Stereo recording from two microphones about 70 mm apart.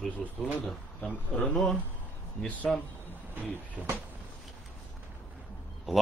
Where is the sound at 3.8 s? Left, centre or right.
Right.